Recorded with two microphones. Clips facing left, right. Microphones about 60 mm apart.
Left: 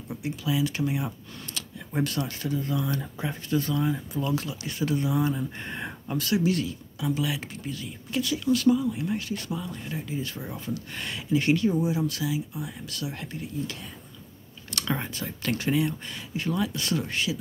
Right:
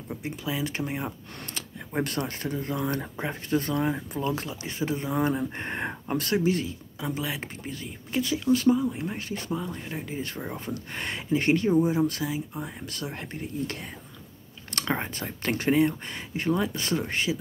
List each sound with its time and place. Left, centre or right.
0.2 s speech: right
1.5 s a sound: right
2.0 s speech: right
3.7 s speech: right
4.2 s speech: right
5.1 s speech: right
6.4 s speech: right